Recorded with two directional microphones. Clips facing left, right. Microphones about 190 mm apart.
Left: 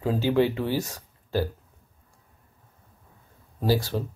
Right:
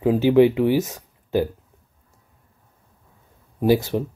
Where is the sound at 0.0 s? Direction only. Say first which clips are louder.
Right 7 dB; 20° right (ahead or behind).